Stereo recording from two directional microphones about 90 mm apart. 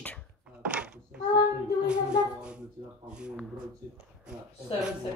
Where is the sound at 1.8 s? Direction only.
10° right (ahead or behind).